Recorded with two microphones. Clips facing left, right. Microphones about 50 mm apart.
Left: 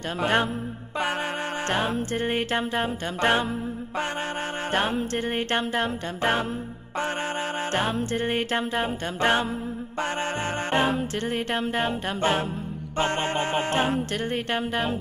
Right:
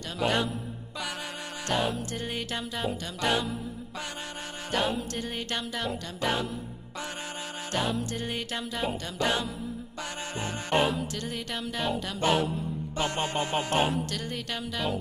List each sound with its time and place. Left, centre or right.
0.2 s music: left
1.7 s music: left
4.7 s music: left
7.7 s music: left
10.7 s music: left